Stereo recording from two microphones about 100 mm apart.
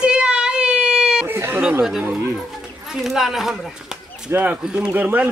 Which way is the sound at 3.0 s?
5° right (ahead or behind).